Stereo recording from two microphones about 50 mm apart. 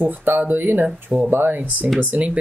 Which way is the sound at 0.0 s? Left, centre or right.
Right.